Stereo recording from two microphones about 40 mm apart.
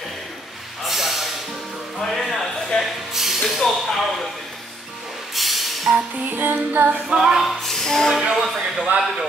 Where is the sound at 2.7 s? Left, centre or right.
Left.